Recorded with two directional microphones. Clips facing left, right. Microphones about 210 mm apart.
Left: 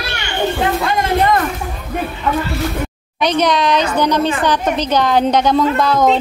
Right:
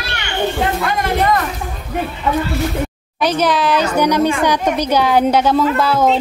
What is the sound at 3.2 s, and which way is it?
A woman's voice, 5° right (ahead or behind).